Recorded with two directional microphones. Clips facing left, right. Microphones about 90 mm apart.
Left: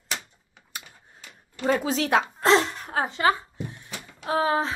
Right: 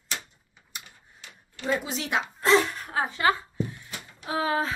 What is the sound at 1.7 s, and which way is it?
Speech, 45° left (ahead or behind).